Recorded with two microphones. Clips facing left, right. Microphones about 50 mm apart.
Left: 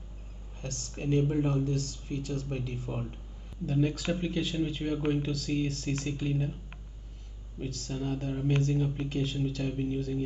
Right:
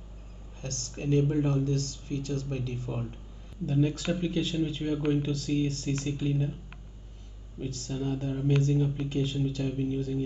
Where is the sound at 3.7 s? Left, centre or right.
Centre.